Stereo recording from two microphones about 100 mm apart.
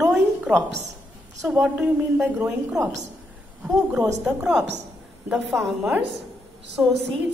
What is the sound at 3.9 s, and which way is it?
A woman's voice, 10° right (ahead or behind).